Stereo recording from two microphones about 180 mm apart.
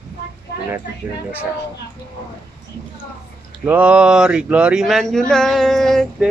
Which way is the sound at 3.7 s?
5° right (ahead or behind).